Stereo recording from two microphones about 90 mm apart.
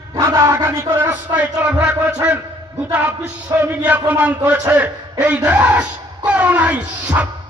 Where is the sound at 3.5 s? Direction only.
35° right (ahead or behind).